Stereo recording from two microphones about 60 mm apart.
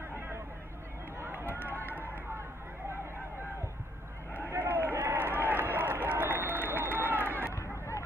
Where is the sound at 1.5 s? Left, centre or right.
Left.